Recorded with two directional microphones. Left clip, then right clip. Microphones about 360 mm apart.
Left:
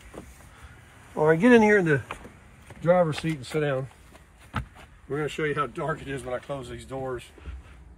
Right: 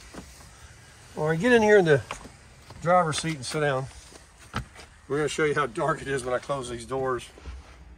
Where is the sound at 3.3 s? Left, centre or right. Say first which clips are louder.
Even; centre.